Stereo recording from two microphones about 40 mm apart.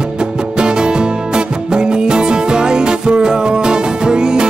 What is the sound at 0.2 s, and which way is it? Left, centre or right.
Music, right.